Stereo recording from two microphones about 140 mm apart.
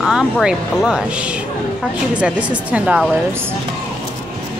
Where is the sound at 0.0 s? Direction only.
5° right (ahead or behind).